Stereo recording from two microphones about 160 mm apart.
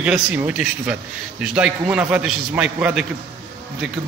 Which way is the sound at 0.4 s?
10° right (ahead or behind).